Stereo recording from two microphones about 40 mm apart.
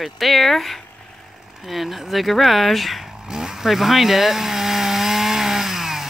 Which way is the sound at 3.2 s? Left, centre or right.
Centre.